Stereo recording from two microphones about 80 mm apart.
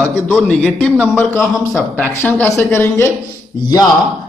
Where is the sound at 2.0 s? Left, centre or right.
Centre.